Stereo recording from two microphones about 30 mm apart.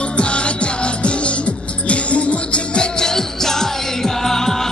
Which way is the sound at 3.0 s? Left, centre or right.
Centre.